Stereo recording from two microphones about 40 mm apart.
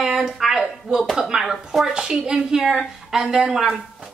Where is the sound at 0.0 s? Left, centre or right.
Centre.